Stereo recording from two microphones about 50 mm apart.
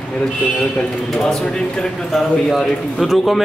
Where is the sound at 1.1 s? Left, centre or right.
Centre.